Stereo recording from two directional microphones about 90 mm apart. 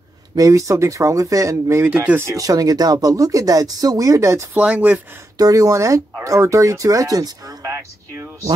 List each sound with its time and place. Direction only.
0.4 s speech: 35° right (ahead or behind)
4.6 s speech: 15° right (ahead or behind)
5.4 s speech: 40° right (ahead or behind)